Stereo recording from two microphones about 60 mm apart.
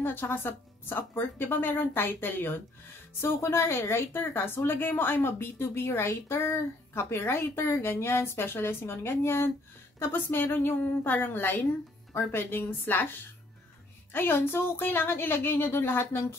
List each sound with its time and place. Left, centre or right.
0.0 s a woman's voice: left
14.1 s a woman's voice: left